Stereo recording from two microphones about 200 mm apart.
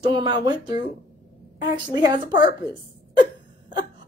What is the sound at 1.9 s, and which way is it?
Speech, 20° right (ahead or behind).